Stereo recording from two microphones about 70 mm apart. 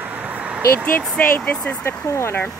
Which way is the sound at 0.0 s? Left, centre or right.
Right.